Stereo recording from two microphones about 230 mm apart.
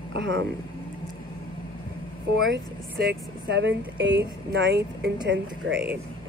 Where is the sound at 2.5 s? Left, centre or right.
Right.